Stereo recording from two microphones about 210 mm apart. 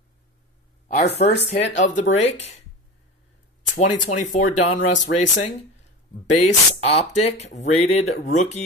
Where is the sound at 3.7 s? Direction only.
35° left (ahead or behind).